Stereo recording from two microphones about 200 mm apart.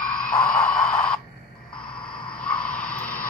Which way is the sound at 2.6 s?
5° left (ahead or behind).